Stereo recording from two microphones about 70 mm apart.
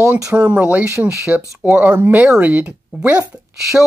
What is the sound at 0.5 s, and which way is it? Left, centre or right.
Speech, right.